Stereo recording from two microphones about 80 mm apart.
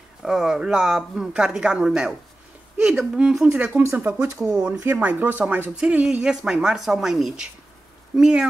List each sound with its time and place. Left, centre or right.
0.2 s speech: centre
3.8 s speech: right
4.3 s speech: right
4.9 s speech: right